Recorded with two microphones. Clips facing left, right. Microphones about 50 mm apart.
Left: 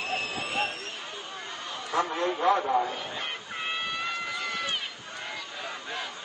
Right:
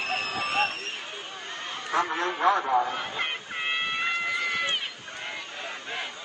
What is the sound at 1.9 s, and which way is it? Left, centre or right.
Speech, right.